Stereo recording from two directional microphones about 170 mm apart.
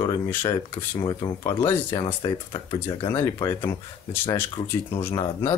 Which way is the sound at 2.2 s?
30° left (ahead or behind).